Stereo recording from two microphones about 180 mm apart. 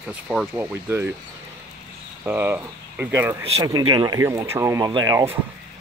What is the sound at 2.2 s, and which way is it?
Speech, 10° right (ahead or behind).